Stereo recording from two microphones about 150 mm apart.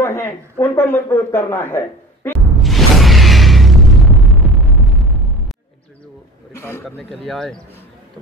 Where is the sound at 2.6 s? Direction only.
Centre (ahead or behind).